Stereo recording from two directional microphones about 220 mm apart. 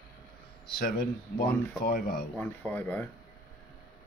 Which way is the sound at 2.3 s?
5° left (ahead or behind).